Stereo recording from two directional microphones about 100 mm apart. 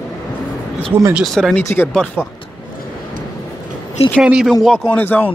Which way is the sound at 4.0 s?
90° left.